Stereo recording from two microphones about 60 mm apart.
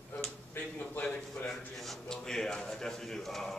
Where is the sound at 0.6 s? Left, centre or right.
Left.